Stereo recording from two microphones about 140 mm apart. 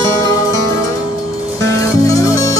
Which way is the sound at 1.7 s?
25° left (ahead or behind).